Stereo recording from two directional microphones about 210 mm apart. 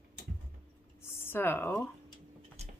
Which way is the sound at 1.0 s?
10° left (ahead or behind).